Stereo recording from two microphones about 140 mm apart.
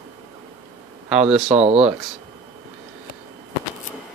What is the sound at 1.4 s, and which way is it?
Speech, 50° right (ahead or behind).